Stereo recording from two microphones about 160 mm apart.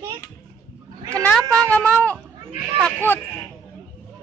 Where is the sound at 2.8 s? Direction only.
10° left (ahead or behind).